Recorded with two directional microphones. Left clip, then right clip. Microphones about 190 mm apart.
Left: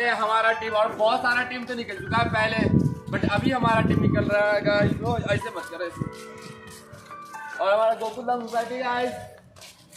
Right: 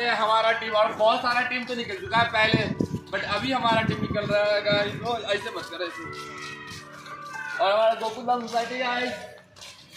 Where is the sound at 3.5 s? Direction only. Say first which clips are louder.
Right 1 dB; centre (ahead or behind).